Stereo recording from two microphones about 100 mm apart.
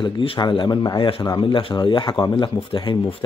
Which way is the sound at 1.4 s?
55° left (ahead or behind).